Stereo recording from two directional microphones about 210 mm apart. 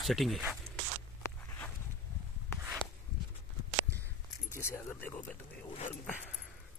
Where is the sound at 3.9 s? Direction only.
15° right (ahead or behind).